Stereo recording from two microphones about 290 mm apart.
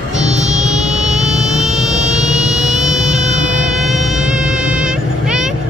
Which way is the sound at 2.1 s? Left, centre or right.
Right.